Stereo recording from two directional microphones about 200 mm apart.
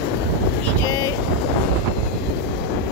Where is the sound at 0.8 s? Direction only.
15° left (ahead or behind).